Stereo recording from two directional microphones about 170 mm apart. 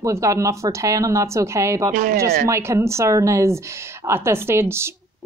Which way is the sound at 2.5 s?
15° right (ahead or behind).